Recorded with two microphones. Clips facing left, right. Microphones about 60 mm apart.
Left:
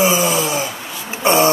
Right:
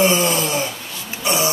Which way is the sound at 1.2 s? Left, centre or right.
Left.